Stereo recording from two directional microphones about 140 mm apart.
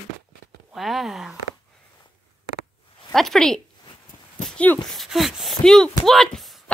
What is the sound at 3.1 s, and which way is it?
A woman's voice, centre (ahead or behind).